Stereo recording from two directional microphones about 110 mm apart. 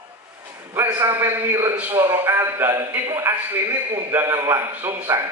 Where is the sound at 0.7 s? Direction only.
20° right (ahead or behind).